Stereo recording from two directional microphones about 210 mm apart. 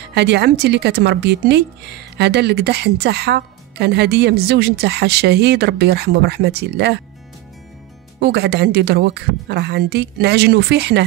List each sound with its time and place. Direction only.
0.1 s speech: 55° right (ahead or behind)
8.2 s speech: 55° right (ahead or behind)